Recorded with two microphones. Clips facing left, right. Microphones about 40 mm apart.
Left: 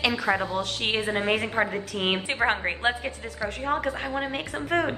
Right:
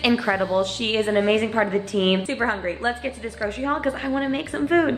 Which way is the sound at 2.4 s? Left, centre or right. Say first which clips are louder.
Right 1 dB; left.